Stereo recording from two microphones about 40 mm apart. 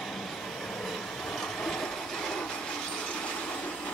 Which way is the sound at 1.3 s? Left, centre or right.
Centre.